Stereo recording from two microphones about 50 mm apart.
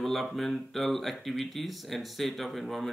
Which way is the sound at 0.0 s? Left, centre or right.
Centre.